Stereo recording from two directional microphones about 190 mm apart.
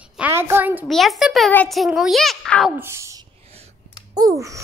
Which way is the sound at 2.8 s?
15° right (ahead or behind).